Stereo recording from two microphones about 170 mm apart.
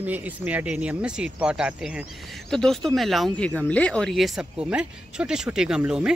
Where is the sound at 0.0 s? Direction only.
10° right (ahead or behind).